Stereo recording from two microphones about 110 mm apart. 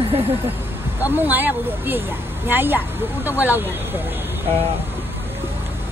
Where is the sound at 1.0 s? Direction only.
15° right (ahead or behind).